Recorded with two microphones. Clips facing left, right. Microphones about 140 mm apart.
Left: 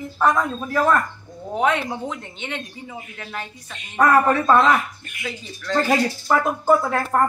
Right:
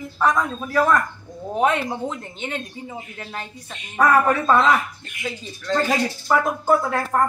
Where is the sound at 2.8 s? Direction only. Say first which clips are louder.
Right 1 dB; 30° right (ahead or behind).